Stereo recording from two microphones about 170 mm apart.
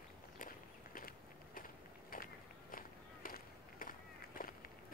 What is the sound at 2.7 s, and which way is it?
Walk, 55° left (ahead or behind).